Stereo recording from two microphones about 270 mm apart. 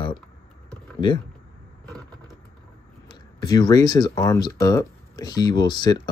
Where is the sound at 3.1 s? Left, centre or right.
Centre.